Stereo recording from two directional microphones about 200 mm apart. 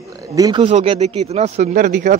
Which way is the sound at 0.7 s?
35° right (ahead or behind).